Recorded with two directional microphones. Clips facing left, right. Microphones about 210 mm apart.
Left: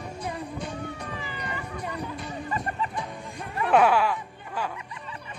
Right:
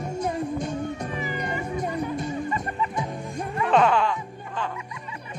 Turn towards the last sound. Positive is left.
turn(degrees=5)  # may be behind; listen again after turning